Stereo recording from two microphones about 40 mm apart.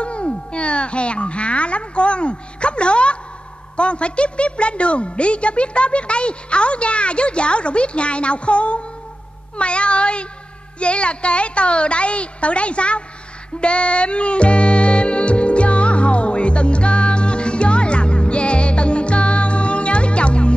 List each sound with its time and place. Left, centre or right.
0.0 s music: left
3.7 s a woman's voice: left
13.6 s music: left